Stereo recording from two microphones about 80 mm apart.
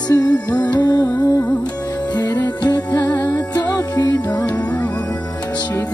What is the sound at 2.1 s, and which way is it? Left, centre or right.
Music, left.